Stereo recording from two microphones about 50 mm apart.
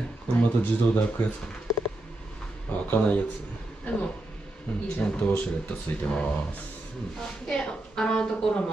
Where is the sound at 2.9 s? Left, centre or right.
Left.